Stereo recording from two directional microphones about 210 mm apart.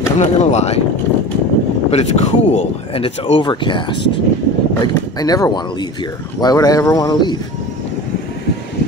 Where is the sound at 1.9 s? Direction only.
30° left (ahead or behind).